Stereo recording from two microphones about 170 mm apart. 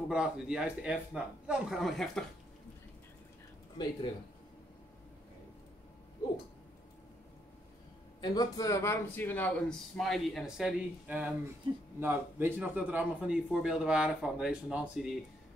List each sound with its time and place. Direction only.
0.1 s speech: 5° right (ahead or behind)
3.7 s speech: 25° left (ahead or behind)
8.2 s speech: 20° left (ahead or behind); by 15.0 s 5° right (ahead or behind)